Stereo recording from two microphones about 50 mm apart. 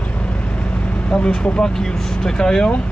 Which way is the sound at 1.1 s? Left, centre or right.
Left.